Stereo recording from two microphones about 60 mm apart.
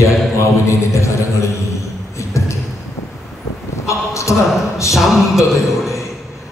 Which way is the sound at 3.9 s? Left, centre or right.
Left.